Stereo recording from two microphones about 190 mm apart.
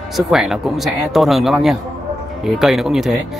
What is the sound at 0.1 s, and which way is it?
Speech, centre (ahead or behind).